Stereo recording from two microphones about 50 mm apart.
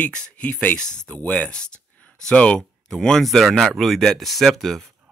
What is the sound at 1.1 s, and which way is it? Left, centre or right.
Speech, left.